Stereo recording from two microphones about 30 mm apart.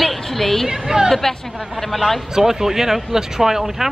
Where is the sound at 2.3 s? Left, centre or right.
Centre.